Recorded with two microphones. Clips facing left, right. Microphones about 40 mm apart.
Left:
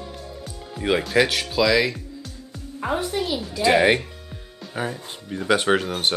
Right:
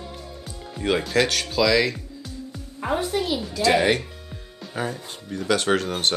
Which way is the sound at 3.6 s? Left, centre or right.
Centre.